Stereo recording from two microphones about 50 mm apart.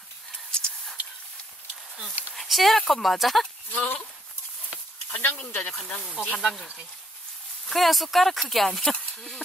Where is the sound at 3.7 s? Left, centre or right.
Left.